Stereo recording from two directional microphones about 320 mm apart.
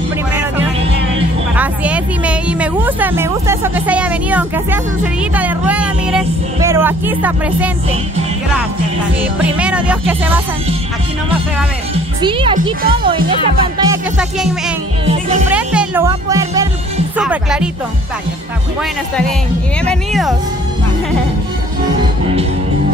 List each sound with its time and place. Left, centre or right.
0.3 s music: centre
1.5 s a woman's voice: centre
9.4 s a woman's voice: centre
11.9 s speech: centre
15.5 s a woman's voice: centre
19.8 s a woman's voice: centre